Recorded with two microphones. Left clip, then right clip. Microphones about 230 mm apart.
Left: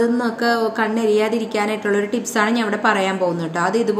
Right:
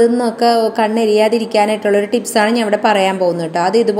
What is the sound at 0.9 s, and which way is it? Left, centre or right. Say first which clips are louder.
Speech: right 3 dB; left.